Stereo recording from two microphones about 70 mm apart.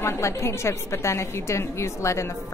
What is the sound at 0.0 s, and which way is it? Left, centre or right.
A woman's voice, left.